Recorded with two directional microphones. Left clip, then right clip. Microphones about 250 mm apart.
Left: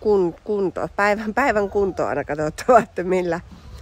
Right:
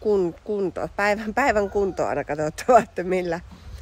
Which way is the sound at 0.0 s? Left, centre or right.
Centre.